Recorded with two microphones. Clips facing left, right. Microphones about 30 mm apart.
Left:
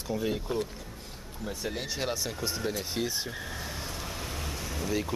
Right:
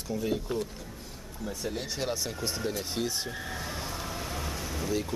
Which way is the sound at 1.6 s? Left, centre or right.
Centre.